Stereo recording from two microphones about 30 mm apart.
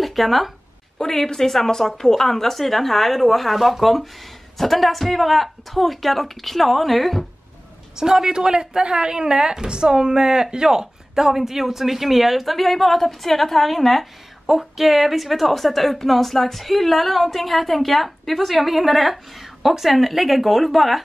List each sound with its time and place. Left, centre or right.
0.0 s speech: centre
0.9 s a woman's voice: centre
7.9 s a woman's voice: centre